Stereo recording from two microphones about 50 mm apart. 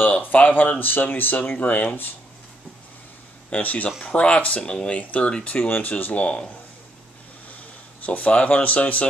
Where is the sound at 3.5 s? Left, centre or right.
Left.